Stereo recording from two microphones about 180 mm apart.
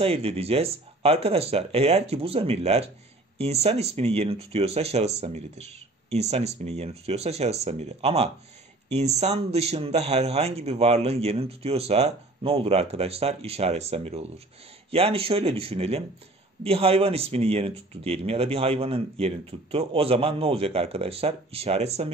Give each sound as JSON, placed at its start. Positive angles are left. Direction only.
{"t": 0.0, "sound": "speech", "side_deg": -35}